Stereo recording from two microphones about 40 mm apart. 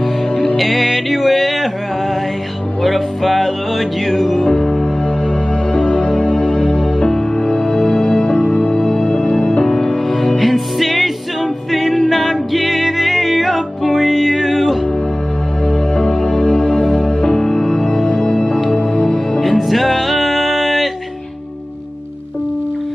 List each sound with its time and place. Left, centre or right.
0.6 s music: centre
2.8 s music: centre
4.4 s music: centre
5.7 s music: left; by 14.8 s centre
15.6 s music: centre
19.4 s music: centre